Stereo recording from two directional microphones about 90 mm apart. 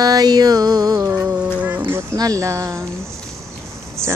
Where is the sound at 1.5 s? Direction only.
15° right (ahead or behind).